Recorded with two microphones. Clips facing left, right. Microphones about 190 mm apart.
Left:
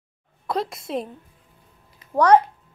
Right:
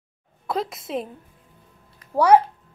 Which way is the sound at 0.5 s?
Centre (ahead or behind).